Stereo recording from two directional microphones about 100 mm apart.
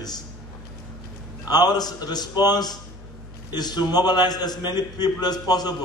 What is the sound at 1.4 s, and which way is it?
A man's voice, 40° left (ahead or behind).